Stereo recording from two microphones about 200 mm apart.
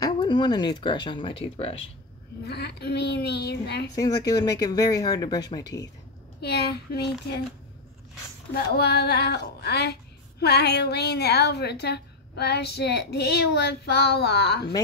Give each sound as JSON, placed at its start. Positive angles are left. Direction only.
{"t": 0.0, "sound": "speech", "side_deg": 20}
{"t": 2.4, "sound": "a woman's voice", "side_deg": 55}
{"t": 3.9, "sound": "speech", "side_deg": 15}
{"t": 6.4, "sound": "speech", "side_deg": 55}
{"t": 8.7, "sound": "a woman's voice", "side_deg": 55}